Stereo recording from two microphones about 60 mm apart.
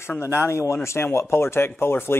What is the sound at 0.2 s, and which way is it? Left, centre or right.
Speech, left.